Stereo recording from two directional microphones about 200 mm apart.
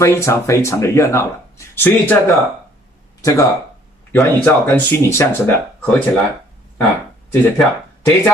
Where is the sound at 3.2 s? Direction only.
15° left (ahead or behind).